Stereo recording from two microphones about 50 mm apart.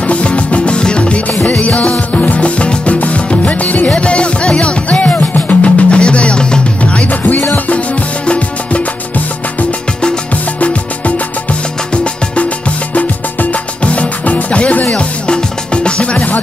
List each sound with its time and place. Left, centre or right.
0.0 s music: left
5.6 s music: left
11.9 s music: left